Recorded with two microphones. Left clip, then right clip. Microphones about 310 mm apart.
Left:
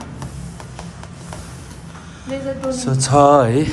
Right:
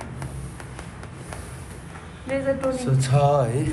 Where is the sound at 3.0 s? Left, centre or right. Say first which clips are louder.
Left 10 dB; left.